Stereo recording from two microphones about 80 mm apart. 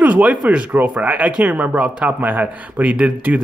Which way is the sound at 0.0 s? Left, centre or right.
Centre.